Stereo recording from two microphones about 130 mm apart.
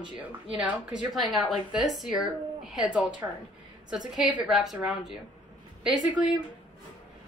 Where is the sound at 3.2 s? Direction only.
20° right (ahead or behind).